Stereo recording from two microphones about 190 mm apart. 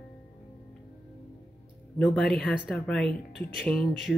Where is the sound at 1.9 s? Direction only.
5° left (ahead or behind).